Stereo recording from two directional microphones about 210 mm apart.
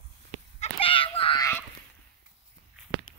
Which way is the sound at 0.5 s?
25° left (ahead or behind).